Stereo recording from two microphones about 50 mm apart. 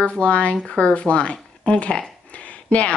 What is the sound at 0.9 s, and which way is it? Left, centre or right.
Speech, left.